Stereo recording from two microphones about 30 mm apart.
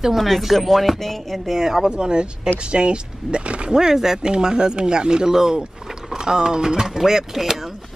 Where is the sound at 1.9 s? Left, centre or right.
Right.